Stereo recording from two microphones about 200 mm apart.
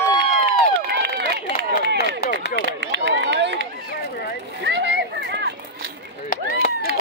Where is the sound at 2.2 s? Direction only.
55° left (ahead or behind).